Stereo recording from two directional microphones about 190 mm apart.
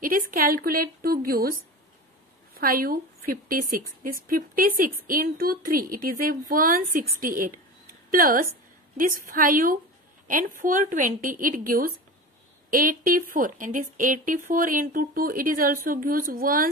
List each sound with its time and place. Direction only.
0.0 s a woman's voice: 45° right (ahead or behind)